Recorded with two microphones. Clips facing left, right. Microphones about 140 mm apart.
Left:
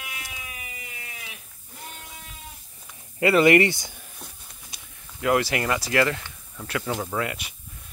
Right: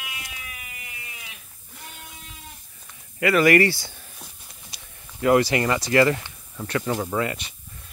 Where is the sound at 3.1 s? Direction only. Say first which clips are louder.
Even; 25° left (ahead or behind).